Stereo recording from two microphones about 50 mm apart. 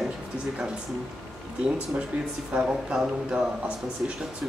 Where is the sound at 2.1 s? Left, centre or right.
Right.